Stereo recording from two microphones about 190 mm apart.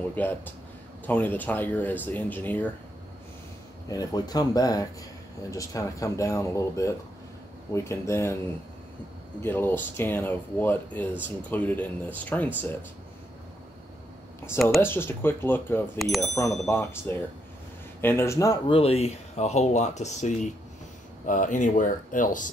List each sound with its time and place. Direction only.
0.1 s speech: 10° left (ahead or behind)
3.9 s speech: 20° left (ahead or behind)
9.4 s speech: 10° left (ahead or behind)
14.8 s speech: 10° left (ahead or behind)
16.0 s speech: centre (ahead or behind)
16.6 s speech: 10° left (ahead or behind)
18.7 s speech: 30° left (ahead or behind)